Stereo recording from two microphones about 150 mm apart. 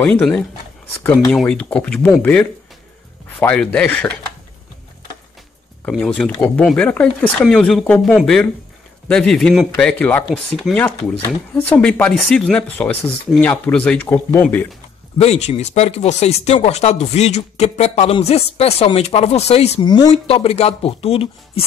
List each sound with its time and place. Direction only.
0.0 s speech: 5° left (ahead or behind)
5.9 s speech: 5° left (ahead or behind)
15.1 s speech: 45° left (ahead or behind)
19.8 s speech: 30° left (ahead or behind)
20.1 s speech: 40° left (ahead or behind)